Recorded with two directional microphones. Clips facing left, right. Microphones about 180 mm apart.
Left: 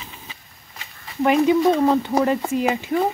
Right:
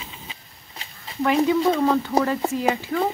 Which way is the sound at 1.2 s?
20° left (ahead or behind).